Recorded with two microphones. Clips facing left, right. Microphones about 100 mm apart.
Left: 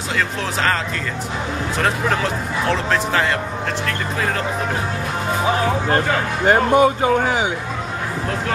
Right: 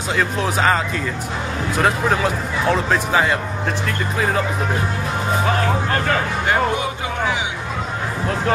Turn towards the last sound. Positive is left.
turn(degrees=45)  # may be behind; listen again after turning